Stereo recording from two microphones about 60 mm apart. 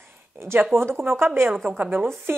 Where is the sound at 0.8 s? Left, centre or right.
Right.